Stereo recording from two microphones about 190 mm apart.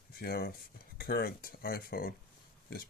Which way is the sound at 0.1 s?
50° left (ahead or behind).